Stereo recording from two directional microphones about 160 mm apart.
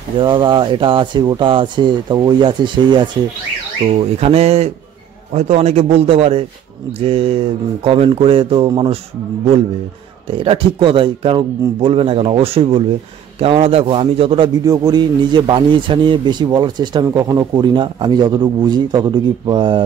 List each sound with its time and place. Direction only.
0.2 s a man's voice: 30° right (ahead or behind)
10.3 s a man's voice: 35° right (ahead or behind)